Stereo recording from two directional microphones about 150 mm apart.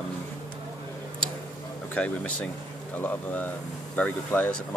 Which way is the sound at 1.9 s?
10° left (ahead or behind).